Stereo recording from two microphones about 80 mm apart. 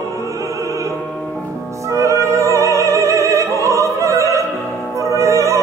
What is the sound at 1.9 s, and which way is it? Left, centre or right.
Opera, right.